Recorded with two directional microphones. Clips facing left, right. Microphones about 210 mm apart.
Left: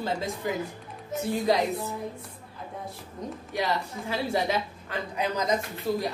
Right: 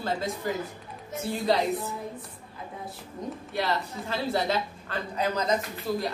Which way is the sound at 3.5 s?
15° left (ahead or behind).